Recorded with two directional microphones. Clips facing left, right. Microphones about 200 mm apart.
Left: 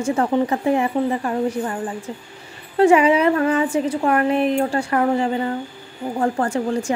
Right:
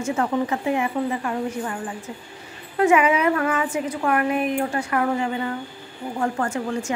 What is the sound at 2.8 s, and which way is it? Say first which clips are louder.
A woman's voice: left 4 dB; 30° left (ahead or behind).